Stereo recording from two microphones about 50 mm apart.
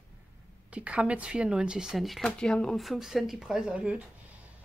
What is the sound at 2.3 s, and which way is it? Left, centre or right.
Speech, centre.